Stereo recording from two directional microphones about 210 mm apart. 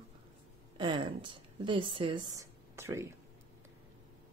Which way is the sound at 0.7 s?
20° right (ahead or behind).